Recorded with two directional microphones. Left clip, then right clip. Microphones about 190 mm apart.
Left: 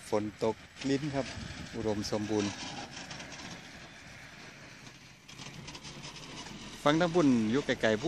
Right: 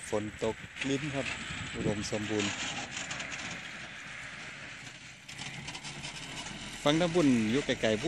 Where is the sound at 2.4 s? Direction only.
Centre (ahead or behind).